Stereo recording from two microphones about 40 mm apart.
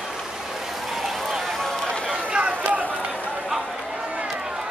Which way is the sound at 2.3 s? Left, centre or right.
Right.